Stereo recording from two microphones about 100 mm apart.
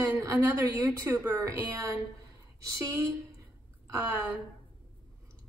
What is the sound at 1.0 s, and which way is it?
A woman's voice, 25° right (ahead or behind).